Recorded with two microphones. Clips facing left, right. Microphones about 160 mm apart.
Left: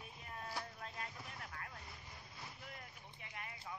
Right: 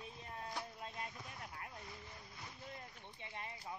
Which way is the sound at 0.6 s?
20° right (ahead or behind).